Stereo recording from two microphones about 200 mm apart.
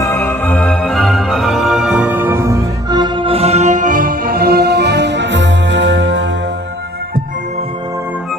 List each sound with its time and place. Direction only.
0.0 s music: 15° left (ahead or behind); by 6.2 s 65° right (ahead or behind)